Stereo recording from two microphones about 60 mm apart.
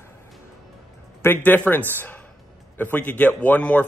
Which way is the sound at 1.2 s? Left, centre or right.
Left.